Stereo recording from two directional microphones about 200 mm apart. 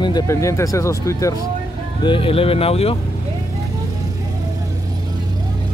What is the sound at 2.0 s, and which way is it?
Speech, 25° left (ahead or behind).